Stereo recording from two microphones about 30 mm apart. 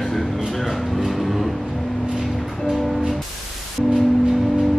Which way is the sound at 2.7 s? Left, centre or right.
Centre.